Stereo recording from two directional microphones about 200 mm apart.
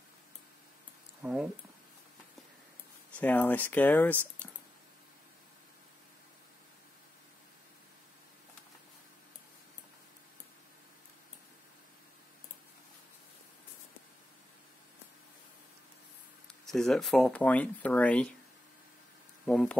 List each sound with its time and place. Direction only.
1.2 s speech: 5° right (ahead or behind)
3.2 s speech: 10° left (ahead or behind)
16.6 s speech: centre (ahead or behind)
19.4 s speech: 5° left (ahead or behind)